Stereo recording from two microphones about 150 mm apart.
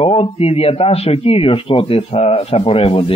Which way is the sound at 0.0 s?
40° left (ahead or behind).